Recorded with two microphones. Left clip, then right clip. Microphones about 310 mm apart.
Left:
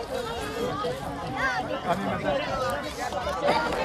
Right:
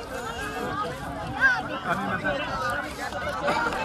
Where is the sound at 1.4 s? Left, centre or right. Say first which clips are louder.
Right 5 dB; left.